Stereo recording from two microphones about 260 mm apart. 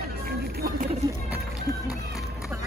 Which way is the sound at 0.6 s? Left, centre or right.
Right.